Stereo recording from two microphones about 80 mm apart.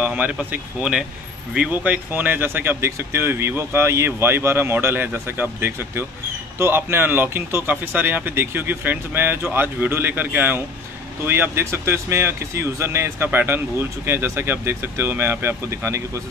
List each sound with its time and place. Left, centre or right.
0.0 s speech: centre; by 16.0 s right